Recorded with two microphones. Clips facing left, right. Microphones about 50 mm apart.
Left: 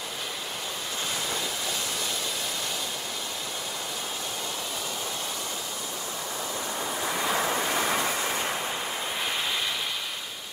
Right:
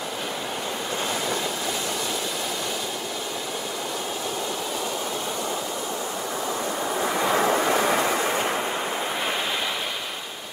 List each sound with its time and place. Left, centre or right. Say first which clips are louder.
7.1 s waves: right 6 dB; centre